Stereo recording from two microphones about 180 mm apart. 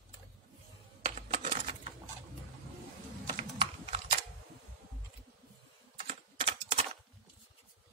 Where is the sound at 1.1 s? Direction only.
35° right (ahead or behind).